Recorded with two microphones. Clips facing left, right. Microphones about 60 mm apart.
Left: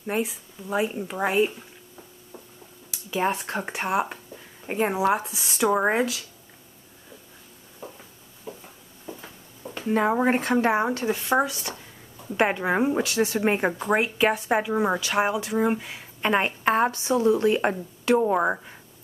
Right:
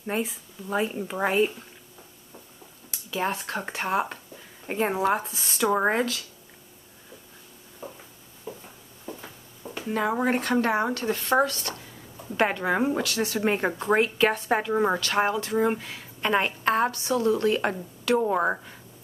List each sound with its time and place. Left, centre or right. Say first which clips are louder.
0.0 s speech: left 2 dB; centre
3.1 s a woman's voice: left 3 dB; left
3.5 s speech: left 1 dB; centre
9.0 s a sound: even; centre
10.2 s a woman's voice: left 2 dB; left
11.1 s speech: even; centre
13.7 s speech: even; centre
15.9 s a woman's voice: left 1 dB; centre
18.2 s speech: left 2 dB; centre